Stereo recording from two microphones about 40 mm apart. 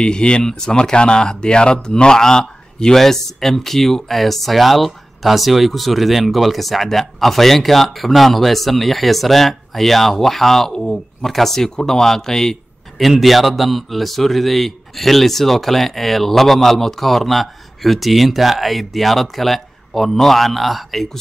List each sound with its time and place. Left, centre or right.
0.0 s speech: left
13.0 s speech: centre